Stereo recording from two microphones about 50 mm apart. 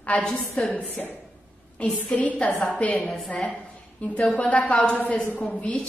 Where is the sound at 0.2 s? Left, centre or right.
Left.